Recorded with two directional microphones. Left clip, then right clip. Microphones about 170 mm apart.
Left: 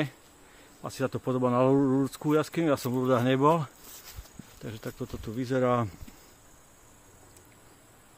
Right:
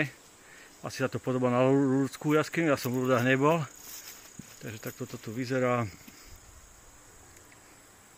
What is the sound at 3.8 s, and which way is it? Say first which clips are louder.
Cricket: right 2 dB; 15° left (ahead or behind).